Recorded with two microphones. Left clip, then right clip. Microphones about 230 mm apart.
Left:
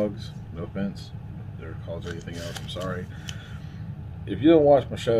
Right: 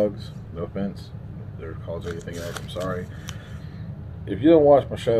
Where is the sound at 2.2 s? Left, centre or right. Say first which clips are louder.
Right 3 dB; centre.